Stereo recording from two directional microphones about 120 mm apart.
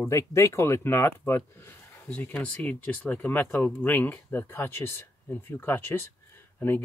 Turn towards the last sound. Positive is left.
turn(degrees=15)  # may be behind; listen again after turning